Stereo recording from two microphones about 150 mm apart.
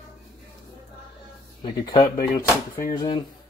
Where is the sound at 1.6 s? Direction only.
30° left (ahead or behind).